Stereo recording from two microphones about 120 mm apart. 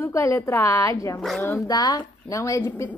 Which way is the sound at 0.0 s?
25° left (ahead or behind).